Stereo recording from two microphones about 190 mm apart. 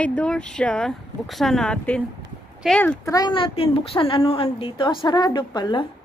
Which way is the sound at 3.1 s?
20° left (ahead or behind).